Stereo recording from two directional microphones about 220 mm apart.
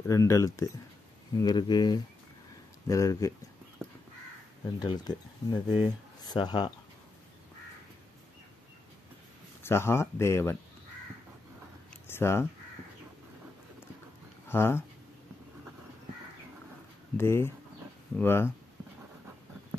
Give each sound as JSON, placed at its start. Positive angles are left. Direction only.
{"t": 0.0, "sound": "speech", "side_deg": 15}
{"t": 4.7, "sound": "speech", "side_deg": 20}
{"t": 9.6, "sound": "speech", "side_deg": 10}
{"t": 12.1, "sound": "speech", "side_deg": 10}
{"t": 14.5, "sound": "speech", "side_deg": 10}
{"t": 17.2, "sound": "speech", "side_deg": 10}